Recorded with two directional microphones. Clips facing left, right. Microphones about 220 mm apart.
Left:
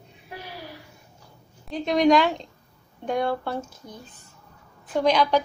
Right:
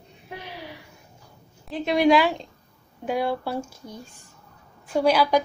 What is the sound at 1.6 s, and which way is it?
A woman's voice, 5° right (ahead or behind).